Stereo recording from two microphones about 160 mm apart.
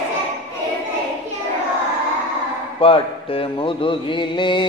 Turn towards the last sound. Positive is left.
turn(degrees=30)  # may be behind; listen again after turning